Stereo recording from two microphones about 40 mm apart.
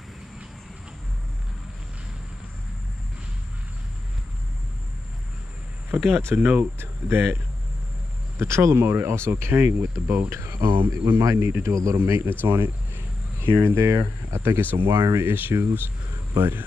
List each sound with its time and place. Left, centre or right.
5.9 s speech: right
6.8 s speech: right
8.4 s speech: right
11.1 s speech: right
13.4 s speech: right
14.9 s speech: right
15.3 s speech: right